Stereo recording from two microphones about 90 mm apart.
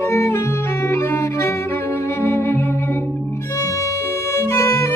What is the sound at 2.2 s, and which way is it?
Music, 25° left (ahead or behind).